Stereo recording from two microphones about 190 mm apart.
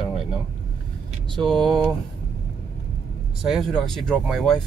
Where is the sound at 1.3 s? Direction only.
Centre (ahead or behind).